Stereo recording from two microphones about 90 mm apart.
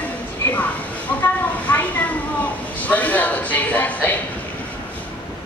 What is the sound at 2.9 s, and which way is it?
Speech, 20° left (ahead or behind).